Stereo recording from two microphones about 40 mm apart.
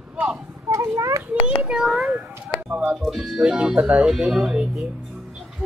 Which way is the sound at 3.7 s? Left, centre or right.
Right.